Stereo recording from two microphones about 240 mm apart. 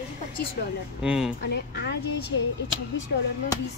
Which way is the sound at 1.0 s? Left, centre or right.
Centre.